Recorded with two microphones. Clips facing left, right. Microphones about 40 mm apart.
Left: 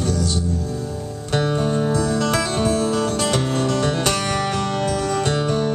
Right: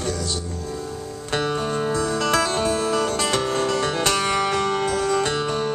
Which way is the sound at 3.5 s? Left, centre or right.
Right.